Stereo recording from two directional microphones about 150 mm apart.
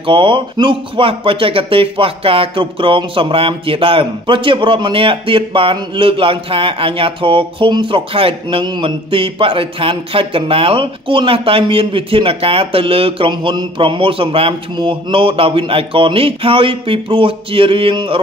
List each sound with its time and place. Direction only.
0.0 s speech: 35° right (ahead or behind)